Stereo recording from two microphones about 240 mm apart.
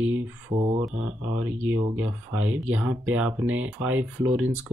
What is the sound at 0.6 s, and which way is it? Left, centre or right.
Speech, right.